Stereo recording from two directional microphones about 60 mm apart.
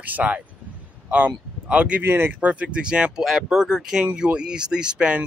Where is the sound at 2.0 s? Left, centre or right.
Right.